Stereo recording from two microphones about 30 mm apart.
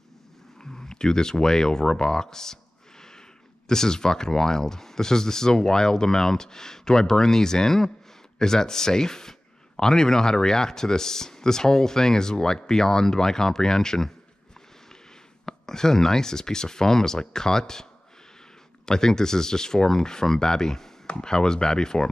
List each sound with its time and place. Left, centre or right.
0.8 s speech: left
15.4 s speech: centre
18.9 s speech: centre